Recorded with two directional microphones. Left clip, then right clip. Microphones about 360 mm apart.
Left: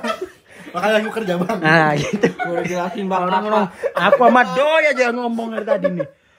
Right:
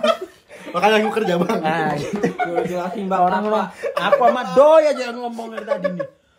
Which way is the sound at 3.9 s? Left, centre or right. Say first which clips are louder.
Left 3 dB; centre.